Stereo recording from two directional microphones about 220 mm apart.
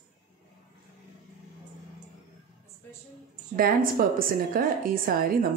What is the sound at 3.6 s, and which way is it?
Speech, 40° right (ahead or behind).